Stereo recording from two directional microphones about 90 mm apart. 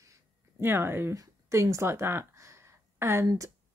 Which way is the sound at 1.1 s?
35° right (ahead or behind).